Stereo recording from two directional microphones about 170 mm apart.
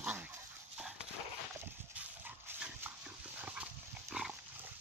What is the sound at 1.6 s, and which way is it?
Clip-clop, 10° right (ahead or behind).